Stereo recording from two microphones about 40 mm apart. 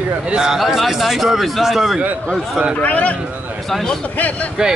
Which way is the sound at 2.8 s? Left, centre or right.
Left.